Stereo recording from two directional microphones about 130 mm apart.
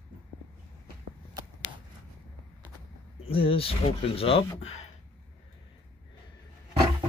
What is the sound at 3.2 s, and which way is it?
Speech, 45° left (ahead or behind).